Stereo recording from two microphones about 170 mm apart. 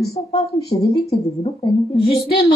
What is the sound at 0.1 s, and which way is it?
Speech, 35° left (ahead or behind).